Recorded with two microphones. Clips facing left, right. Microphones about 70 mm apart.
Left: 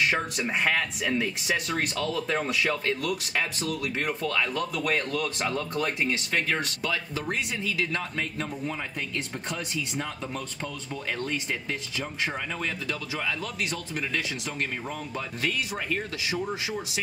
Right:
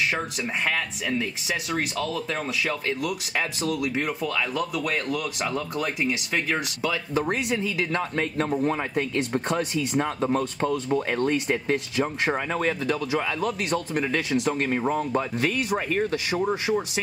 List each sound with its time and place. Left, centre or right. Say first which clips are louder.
0.0 s speech: even; centre
7.2 s speech: right 6 dB; right
8.5 s speech: right 8 dB; right